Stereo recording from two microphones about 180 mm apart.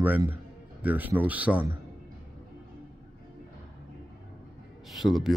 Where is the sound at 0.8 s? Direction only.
10° right (ahead or behind).